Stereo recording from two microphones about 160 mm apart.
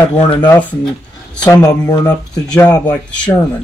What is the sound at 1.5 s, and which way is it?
Speech, 20° left (ahead or behind).